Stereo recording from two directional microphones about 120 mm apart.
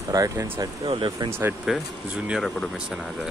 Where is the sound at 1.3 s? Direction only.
20° right (ahead or behind).